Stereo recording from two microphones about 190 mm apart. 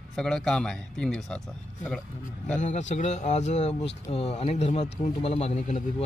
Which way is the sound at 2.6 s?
40° left (ahead or behind).